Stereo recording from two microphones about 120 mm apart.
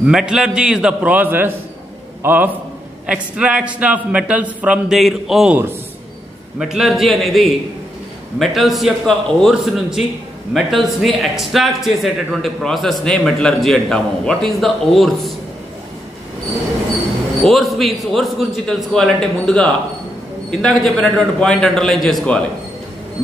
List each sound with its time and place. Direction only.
0.0 s a man's voice: 5° right (ahead or behind)
6.6 s a man's voice: 5° right (ahead or behind)
17.4 s a man's voice: centre (ahead or behind)